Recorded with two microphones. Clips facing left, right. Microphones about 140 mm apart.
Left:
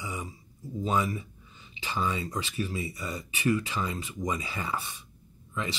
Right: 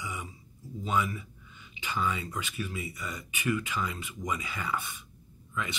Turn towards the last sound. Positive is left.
turn(degrees=30)  # may be behind; listen again after turning